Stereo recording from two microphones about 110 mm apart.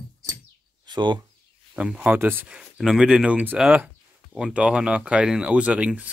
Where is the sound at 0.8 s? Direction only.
45° right (ahead or behind).